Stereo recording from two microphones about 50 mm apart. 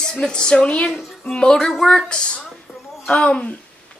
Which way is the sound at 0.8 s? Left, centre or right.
Centre.